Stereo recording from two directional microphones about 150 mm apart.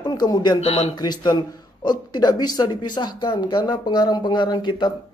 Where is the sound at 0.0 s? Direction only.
25° left (ahead or behind).